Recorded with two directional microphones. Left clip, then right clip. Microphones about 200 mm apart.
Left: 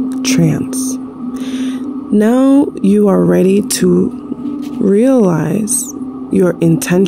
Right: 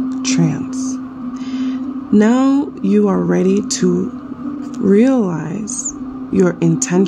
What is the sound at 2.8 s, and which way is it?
Speech, 20° left (ahead or behind).